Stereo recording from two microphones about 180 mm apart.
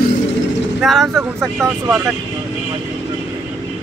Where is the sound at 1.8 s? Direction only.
10° right (ahead or behind).